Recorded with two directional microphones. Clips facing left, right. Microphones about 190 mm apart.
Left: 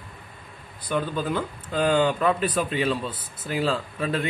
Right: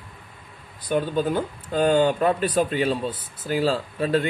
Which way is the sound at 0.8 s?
40° right (ahead or behind).